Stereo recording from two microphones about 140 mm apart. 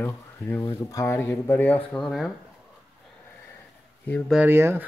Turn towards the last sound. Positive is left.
turn(degrees=-15)  # may be behind; listen again after turning